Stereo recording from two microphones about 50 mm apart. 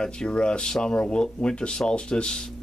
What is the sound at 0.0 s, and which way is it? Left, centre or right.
Speech, centre.